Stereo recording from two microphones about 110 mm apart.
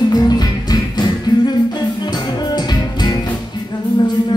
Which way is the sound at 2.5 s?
40° left (ahead or behind).